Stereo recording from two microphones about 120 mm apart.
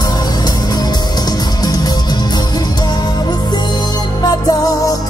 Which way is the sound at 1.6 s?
35° left (ahead or behind).